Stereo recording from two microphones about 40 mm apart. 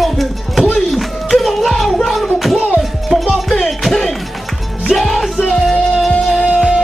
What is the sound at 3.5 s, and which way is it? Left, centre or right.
Music, centre.